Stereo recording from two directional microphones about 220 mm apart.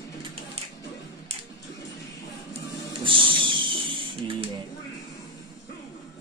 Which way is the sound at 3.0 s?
25° right (ahead or behind).